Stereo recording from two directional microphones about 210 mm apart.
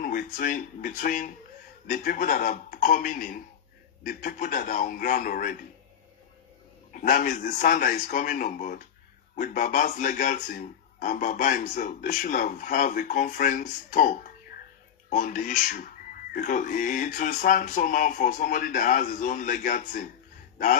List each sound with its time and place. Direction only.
0.0 s speech: 40° left (ahead or behind)
6.9 s speech: 40° left (ahead or behind)